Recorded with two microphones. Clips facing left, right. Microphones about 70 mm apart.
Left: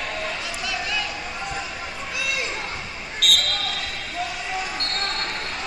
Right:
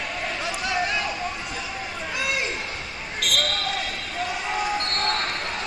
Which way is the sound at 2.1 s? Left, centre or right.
Right.